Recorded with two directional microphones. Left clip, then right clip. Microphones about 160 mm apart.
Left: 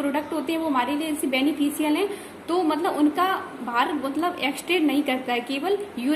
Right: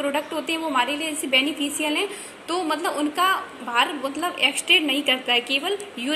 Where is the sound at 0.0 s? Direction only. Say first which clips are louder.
Right 1 dB; 5° right (ahead or behind).